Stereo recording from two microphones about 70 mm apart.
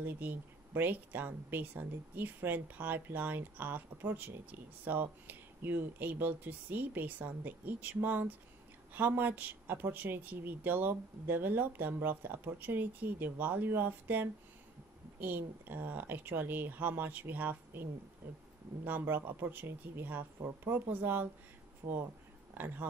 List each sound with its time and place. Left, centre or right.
0.0 s speech: right
21.8 s speech: right
22.5 s speech: right